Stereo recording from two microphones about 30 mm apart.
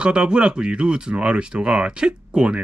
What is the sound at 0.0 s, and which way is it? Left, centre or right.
Speech, right.